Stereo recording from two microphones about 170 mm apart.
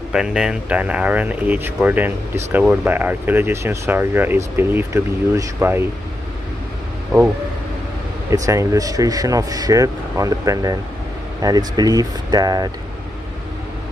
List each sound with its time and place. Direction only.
0.1 s speech: 5° right (ahead or behind)
8.3 s speech: 20° right (ahead or behind)